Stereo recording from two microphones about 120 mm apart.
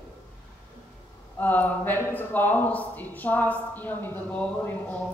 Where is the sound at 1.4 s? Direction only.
15° left (ahead or behind).